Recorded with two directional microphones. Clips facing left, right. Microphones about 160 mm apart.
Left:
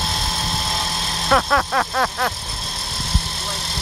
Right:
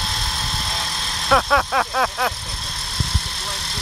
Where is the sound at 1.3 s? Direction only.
Centre (ahead or behind).